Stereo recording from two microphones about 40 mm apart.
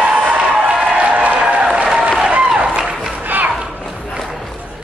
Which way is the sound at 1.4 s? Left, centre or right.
Right.